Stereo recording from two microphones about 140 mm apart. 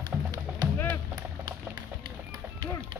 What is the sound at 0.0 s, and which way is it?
Music, 30° right (ahead or behind).